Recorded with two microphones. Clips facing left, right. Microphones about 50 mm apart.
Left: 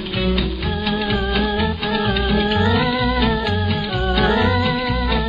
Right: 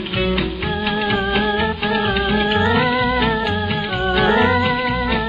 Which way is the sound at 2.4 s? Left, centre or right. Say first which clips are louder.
Right 2 dB; right.